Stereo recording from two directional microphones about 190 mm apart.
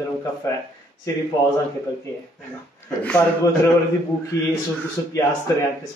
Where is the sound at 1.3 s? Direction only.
15° left (ahead or behind).